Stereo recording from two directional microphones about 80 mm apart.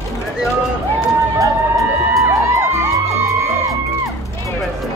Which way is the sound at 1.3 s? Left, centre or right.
Right.